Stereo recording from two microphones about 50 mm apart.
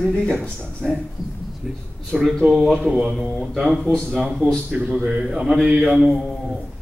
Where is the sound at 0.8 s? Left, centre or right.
Centre.